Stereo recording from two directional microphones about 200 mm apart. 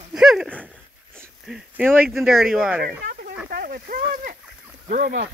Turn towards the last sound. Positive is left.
turn(degrees=-50)  # may be behind; listen again after turning